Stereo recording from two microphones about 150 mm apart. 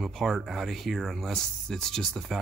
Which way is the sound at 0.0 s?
Centre (ahead or behind).